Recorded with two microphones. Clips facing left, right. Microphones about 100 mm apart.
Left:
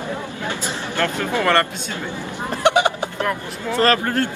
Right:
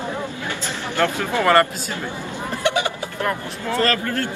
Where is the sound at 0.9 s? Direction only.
15° right (ahead or behind).